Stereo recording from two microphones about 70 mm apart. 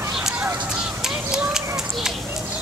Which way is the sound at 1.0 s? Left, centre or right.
Centre.